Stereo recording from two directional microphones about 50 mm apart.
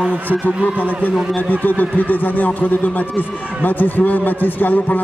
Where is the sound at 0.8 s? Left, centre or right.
Left.